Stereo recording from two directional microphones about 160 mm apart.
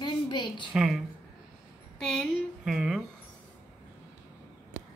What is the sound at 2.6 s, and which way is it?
Speech, 5° right (ahead or behind).